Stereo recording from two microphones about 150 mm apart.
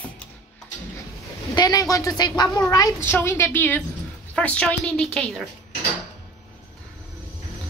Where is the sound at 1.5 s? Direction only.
25° left (ahead or behind); by 5.4 s 5° left (ahead or behind).